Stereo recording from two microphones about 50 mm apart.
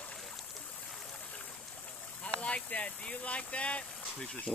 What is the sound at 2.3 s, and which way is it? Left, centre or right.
Speech, left.